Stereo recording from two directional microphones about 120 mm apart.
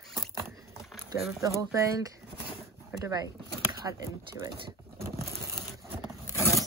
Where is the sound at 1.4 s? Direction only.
25° right (ahead or behind).